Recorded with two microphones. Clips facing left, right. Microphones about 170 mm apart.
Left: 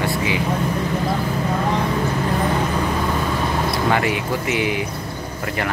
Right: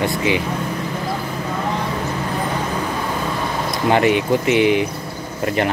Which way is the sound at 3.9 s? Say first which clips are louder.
Right 9 dB; 25° right (ahead or behind).